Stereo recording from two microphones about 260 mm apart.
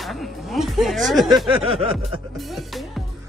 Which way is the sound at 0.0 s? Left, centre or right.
Centre.